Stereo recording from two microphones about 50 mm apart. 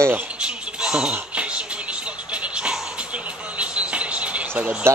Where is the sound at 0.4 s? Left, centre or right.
Centre.